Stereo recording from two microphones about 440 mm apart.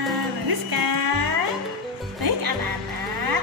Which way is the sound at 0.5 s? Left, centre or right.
Right.